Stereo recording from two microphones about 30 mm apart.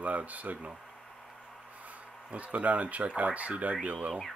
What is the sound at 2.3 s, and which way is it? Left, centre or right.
Speech, right.